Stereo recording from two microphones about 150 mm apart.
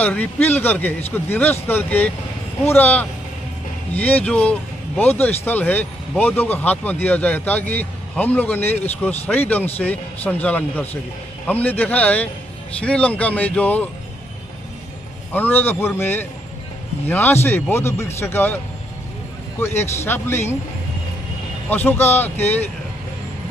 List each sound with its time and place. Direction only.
0.0 s speech: 10° left (ahead or behind)
15.3 s speech: 15° left (ahead or behind)
19.6 s speech: 15° left (ahead or behind)
21.6 s speech: 15° left (ahead or behind)